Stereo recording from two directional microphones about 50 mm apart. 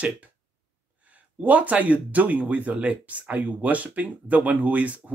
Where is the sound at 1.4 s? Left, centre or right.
Right.